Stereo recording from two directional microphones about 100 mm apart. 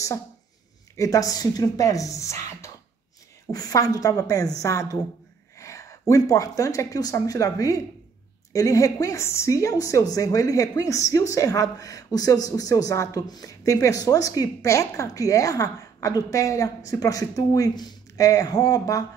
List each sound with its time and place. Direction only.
0.9 s a woman's voice: 35° left (ahead or behind)